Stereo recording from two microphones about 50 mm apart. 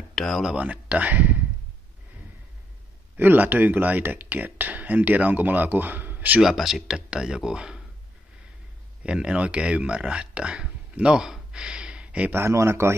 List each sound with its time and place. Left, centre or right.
0.1 s a sound: centre
0.6 s speech: right
3.2 s speech: right
6.4 s speech: centre
7.1 s speech: centre
9.0 s speech: right
11.2 s a sound: centre
12.3 s speech: right